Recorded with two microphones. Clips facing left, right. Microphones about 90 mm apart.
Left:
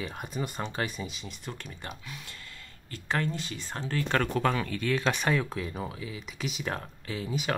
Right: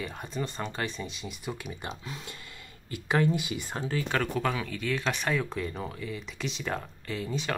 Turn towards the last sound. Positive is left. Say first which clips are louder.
# even
turn(degrees=5)  # may be behind; listen again after turning